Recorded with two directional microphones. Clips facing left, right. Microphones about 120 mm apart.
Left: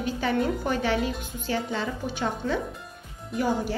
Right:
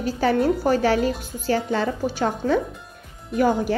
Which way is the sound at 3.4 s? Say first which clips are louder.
Right 6 dB; 60° right (ahead or behind).